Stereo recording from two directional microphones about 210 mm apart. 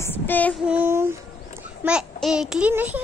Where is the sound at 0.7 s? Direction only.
10° right (ahead or behind).